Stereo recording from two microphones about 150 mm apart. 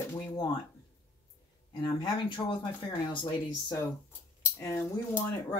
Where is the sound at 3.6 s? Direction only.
25° left (ahead or behind).